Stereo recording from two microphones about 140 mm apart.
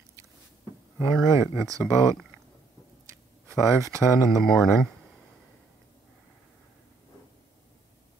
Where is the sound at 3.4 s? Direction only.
20° right (ahead or behind).